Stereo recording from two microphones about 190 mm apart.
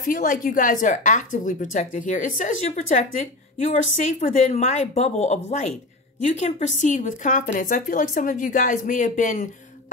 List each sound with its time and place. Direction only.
0.0 s a woman's voice: 45° left (ahead or behind)